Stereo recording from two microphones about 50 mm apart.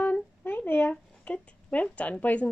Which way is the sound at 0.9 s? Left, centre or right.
Left.